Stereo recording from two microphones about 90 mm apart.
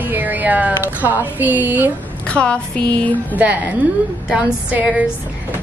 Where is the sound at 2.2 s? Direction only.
10° left (ahead or behind).